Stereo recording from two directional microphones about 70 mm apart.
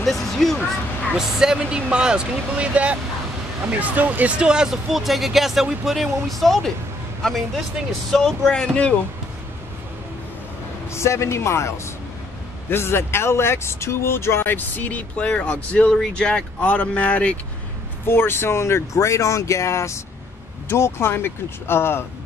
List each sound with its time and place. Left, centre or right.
0.0 s speech: centre
1.1 s speech: centre
10.9 s speech: left; by 17.4 s centre
18.0 s speech: left